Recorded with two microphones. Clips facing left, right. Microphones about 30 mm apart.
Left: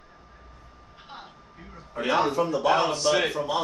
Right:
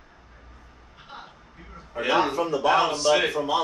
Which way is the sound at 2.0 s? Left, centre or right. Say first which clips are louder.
Right 1 dB; centre.